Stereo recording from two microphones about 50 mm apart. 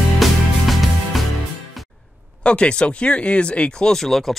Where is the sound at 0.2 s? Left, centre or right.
Centre.